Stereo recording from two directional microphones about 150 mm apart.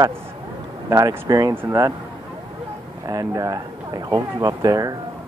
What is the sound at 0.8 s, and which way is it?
Speech, 20° right (ahead or behind).